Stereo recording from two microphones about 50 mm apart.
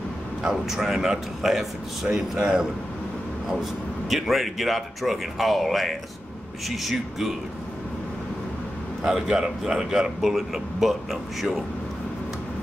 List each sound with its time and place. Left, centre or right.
0.5 s a man's voice: centre
4.1 s speech: centre
9.0 s a man's voice: centre